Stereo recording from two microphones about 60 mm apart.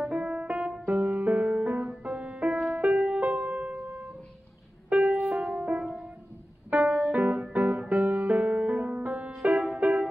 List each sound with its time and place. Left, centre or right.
0.0 s music: centre
4.8 s music: centre
6.7 s piano: right
7.5 s music: right